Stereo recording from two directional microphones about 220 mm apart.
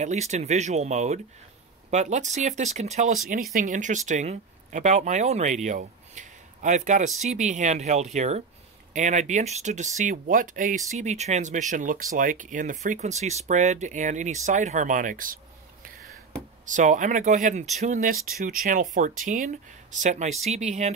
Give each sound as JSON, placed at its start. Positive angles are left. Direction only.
{"t": 0.0, "sound": "speech", "side_deg": -30}
{"t": 16.6, "sound": "speech", "side_deg": -35}